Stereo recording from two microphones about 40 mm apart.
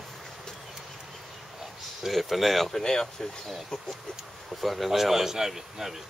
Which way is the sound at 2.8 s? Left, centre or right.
Centre.